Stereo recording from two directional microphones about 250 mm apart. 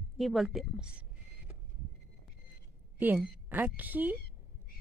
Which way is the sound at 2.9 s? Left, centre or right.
Centre.